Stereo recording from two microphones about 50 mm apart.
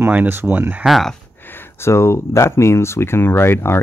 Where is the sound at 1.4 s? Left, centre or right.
Left.